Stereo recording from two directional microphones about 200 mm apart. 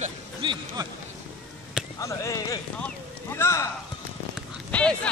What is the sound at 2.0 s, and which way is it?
Speech, 15° left (ahead or behind).